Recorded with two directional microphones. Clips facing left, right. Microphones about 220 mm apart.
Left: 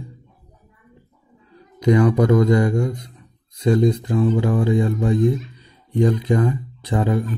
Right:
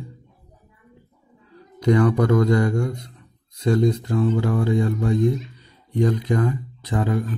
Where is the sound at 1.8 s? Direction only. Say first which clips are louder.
Left 2 dB; 15° left (ahead or behind).